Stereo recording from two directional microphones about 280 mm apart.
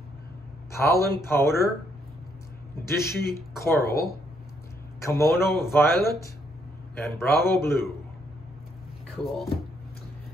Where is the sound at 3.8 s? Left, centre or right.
Left.